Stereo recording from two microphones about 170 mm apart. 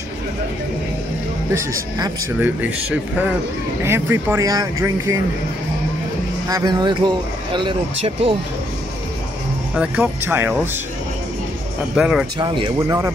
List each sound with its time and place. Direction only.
2.4 s speech: 10° right (ahead or behind)
6.5 s speech: 25° right (ahead or behind)
9.8 s speech: 10° right (ahead or behind)
11.9 s speech: 5° right (ahead or behind)
12.4 s speech: 25° right (ahead or behind)
12.7 s speech: 15° right (ahead or behind)